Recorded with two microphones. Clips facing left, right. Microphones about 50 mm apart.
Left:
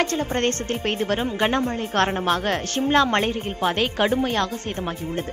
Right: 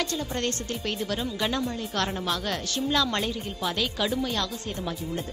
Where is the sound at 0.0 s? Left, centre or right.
Left.